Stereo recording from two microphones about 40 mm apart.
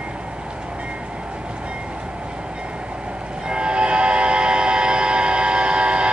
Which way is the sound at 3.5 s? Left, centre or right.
Right.